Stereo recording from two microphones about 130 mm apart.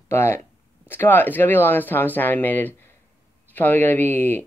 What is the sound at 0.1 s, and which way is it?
Speech, 20° left (ahead or behind).